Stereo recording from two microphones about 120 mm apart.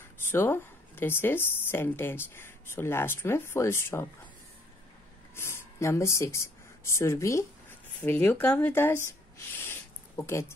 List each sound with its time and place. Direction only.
0.2 s speech: 20° left (ahead or behind)
5.3 s speech: 20° left (ahead or behind)
9.6 s a sound: 20° left (ahead or behind)